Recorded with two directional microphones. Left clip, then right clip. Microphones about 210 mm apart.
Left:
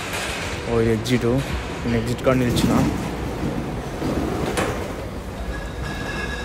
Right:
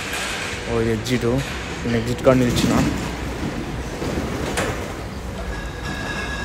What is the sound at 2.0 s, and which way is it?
Speech, 5° left (ahead or behind).